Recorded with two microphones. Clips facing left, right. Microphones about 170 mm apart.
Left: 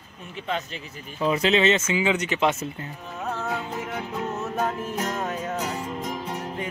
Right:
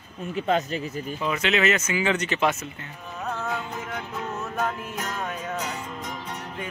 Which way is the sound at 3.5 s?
10° left (ahead or behind).